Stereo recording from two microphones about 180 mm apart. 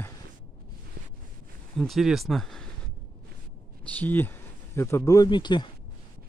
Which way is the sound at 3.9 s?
10° left (ahead or behind).